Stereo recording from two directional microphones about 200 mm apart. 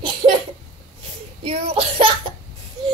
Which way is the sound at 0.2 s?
20° right (ahead or behind).